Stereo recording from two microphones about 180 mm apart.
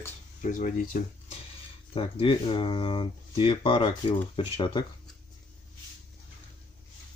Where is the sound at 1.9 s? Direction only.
30° left (ahead or behind).